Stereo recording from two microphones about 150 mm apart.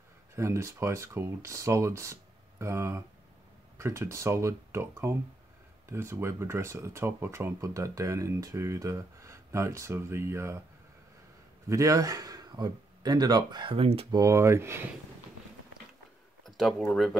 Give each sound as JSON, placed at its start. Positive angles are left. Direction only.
{"t": 0.4, "sound": "speech", "side_deg": -20}
{"t": 11.7, "sound": "speech", "side_deg": -20}
{"t": 14.1, "sound": "speech", "side_deg": -20}
{"t": 16.4, "sound": "speech", "side_deg": 0}